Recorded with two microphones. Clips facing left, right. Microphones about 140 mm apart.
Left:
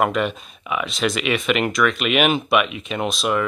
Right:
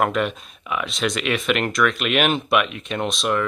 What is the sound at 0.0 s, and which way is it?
Speech, centre (ahead or behind).